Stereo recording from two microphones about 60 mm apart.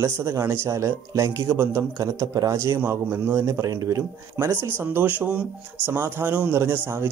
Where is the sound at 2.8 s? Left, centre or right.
Right.